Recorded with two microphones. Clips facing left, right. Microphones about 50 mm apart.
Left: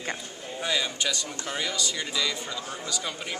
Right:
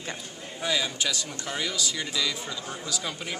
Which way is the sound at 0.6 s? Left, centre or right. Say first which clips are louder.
Even; centre.